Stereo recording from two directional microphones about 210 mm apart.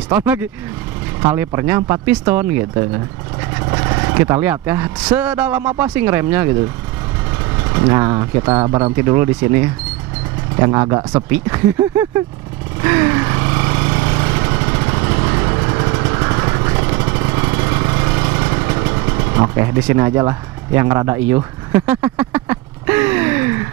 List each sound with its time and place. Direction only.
0.1 s speech: 10° right (ahead or behind)
3.5 s speech: 15° right (ahead or behind)
7.7 s speech: 15° right (ahead or behind)
8.9 s speech: 15° right (ahead or behind)
12.8 s lawn mower: 15° right (ahead or behind)